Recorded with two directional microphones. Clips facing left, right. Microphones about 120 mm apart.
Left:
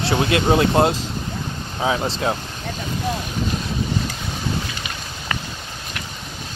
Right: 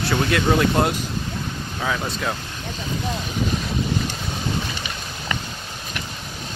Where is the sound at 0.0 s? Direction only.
25° left (ahead or behind).